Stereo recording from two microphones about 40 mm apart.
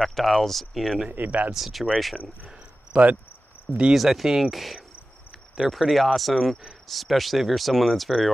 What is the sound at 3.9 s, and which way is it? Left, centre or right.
Speech, centre.